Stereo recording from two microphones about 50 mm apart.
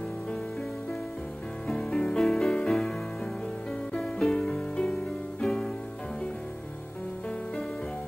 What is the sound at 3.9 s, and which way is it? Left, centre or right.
Music, centre.